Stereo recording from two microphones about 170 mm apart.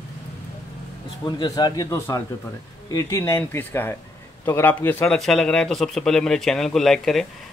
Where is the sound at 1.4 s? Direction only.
25° left (ahead or behind).